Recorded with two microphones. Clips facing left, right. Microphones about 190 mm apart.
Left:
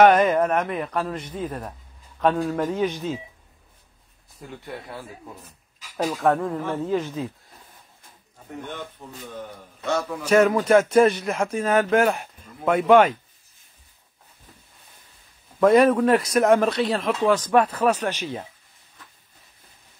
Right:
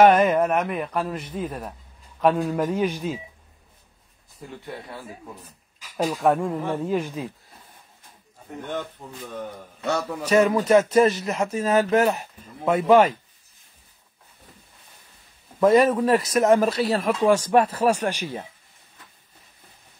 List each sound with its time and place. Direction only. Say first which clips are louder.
0.0 s speech: even; 10° right (ahead or behind)
6.0 s speech: even; 10° right (ahead or behind)
10.2 s speech: left 1 dB; centre (ahead or behind)
15.6 s speech: left 1 dB; centre (ahead or behind)